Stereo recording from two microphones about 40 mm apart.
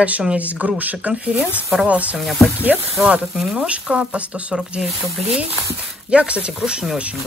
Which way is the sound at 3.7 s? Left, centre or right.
Right.